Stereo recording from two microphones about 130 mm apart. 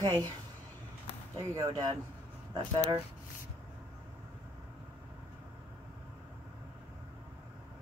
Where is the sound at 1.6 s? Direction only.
35° right (ahead or behind).